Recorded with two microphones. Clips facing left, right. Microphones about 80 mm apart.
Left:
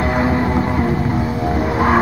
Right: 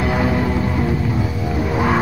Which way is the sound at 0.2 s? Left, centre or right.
Left.